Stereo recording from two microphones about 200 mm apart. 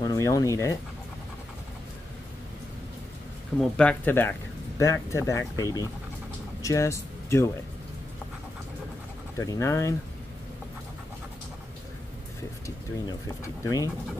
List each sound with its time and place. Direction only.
0.0 s speech: 15° left (ahead or behind)
3.7 s speech: 10° left (ahead or behind)
9.4 s speech: 15° left (ahead or behind)
12.6 s speech: 15° left (ahead or behind)